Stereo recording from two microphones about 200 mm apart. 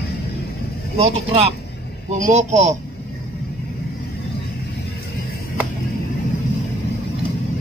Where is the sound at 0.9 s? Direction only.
30° right (ahead or behind).